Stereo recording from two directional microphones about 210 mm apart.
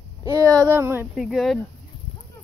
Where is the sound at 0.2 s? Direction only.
15° right (ahead or behind).